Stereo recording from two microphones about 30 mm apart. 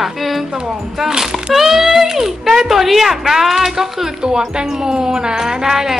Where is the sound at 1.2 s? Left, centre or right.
Centre.